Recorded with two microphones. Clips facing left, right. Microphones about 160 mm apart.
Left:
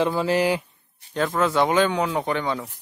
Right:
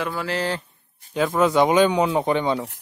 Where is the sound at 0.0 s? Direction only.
20° left (ahead or behind).